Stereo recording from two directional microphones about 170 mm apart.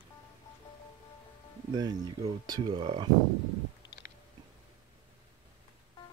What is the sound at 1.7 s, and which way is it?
Speech, 25° right (ahead or behind).